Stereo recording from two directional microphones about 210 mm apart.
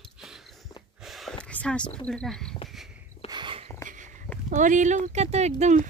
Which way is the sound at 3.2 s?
20° right (ahead or behind).